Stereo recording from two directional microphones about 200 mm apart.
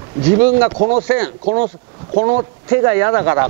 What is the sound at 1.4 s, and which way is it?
Speech, 35° right (ahead or behind).